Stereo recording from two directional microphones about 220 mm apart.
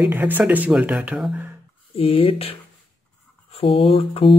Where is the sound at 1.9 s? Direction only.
25° left (ahead or behind).